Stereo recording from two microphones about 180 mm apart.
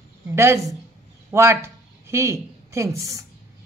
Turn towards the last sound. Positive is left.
turn(degrees=-20)  # may be behind; listen again after turning